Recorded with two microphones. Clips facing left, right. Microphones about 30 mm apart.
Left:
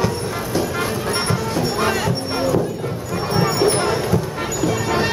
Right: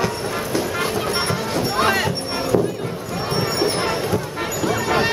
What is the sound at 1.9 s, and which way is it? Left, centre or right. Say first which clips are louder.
Music: right 1 dB; centre.